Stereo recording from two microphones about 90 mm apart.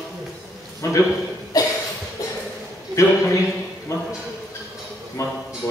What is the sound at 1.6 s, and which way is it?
Cough, 45° left (ahead or behind).